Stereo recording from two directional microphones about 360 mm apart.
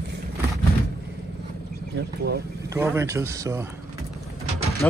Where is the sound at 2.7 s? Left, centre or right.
Centre.